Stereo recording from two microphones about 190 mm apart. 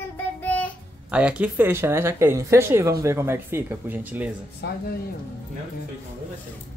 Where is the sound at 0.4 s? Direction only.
10° left (ahead or behind).